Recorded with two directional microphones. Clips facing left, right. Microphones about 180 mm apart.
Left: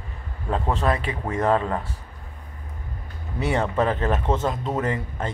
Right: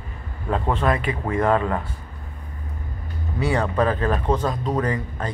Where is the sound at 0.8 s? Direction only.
30° left (ahead or behind).